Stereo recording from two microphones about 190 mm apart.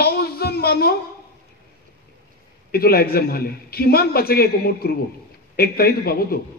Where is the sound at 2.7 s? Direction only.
55° left (ahead or behind).